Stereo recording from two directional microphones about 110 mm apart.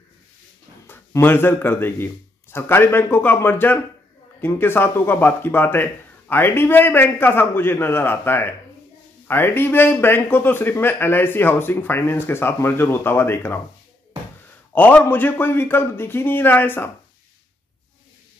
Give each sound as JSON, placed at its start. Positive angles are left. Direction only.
{"t": 0.8, "sound": "a man's voice", "side_deg": 20}
{"t": 14.7, "sound": "a man's voice", "side_deg": 15}